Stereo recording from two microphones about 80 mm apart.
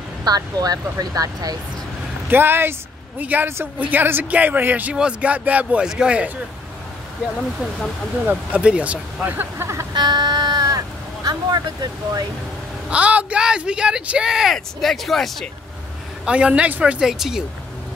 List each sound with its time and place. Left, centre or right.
0.2 s speech: right
2.2 s speech: right
8.3 s speech: centre; by 9.8 s right
9.9 s a sound: right
11.2 s speech: right
12.9 s speech: centre
16.3 s speech: centre